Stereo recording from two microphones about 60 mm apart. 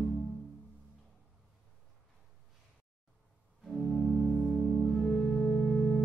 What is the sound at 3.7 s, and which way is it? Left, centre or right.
Organ, centre.